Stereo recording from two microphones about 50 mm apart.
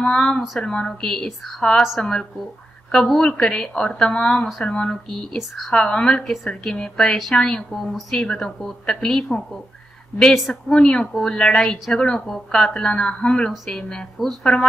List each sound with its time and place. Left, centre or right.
0.0 s a woman's voice: centre
1.8 s a woman's voice: centre
2.9 s a woman's voice: centre
6.2 s a woman's voice: centre
10.7 s a woman's voice: centre